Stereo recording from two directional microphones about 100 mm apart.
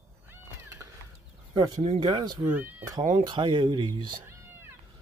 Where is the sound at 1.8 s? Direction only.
55° right (ahead or behind).